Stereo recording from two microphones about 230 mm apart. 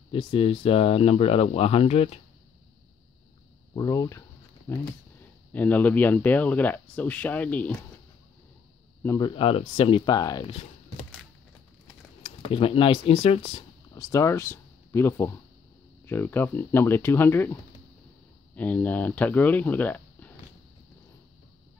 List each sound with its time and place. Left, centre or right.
0.1 s speech: left
3.7 s speech: centre
9.0 s speech: centre
9.3 s speech: left
12.2 s speech: left; by 20.3 s centre